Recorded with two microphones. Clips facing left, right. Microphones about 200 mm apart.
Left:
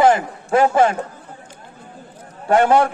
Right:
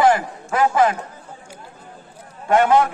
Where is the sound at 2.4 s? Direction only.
30° left (ahead or behind).